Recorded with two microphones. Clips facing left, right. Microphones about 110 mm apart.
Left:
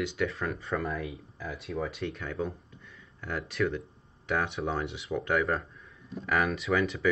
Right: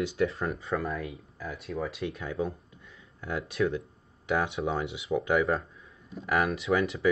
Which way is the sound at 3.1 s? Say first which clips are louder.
Right 2 dB; 25° right (ahead or behind).